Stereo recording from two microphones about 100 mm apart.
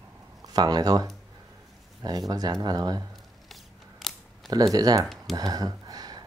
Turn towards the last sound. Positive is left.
turn(degrees=-40)  # may be behind; listen again after turning